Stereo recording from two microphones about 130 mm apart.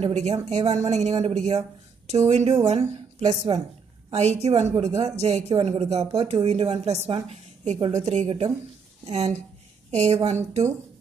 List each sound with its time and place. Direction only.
0.0 s a woman's voice: 55° right (ahead or behind)
3.3 s speech: 35° right (ahead or behind)
4.1 s a woman's voice: 60° right (ahead or behind)